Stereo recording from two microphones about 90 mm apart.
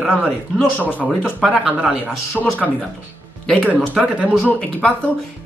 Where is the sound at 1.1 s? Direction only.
10° left (ahead or behind).